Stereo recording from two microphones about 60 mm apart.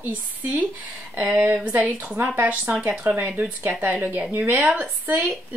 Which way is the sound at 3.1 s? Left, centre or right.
Right.